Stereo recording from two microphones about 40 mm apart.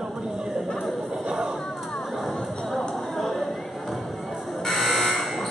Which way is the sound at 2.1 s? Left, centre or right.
Centre.